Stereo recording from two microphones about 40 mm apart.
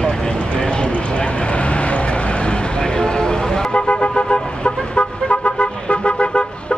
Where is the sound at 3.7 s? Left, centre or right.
Left.